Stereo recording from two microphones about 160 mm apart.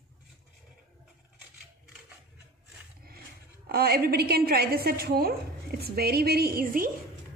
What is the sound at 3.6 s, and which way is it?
A woman's voice, 75° right (ahead or behind).